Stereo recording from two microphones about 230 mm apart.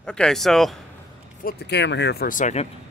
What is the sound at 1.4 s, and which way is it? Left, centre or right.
Speech, left.